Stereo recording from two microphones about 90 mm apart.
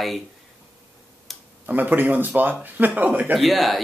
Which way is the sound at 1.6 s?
20° right (ahead or behind).